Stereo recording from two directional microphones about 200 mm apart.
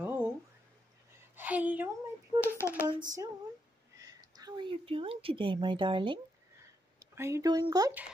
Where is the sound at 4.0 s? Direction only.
20° right (ahead or behind).